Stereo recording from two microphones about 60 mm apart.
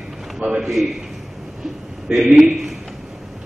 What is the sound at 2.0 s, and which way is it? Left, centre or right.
Speech, centre.